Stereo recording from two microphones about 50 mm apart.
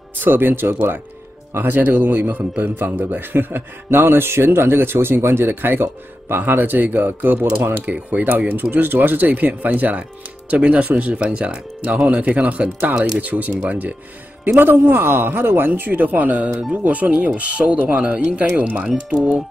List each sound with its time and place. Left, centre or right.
0.2 s a man's voice: right
7.8 s speech: right
13.2 s speech: right
14.6 s a man's voice: right; by 19.4 s centre